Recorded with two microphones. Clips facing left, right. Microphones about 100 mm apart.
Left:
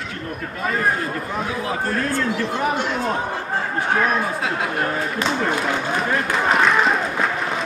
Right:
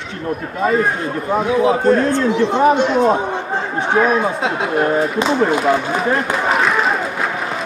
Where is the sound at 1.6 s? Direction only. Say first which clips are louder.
Right 10 dB; 20° right (ahead or behind).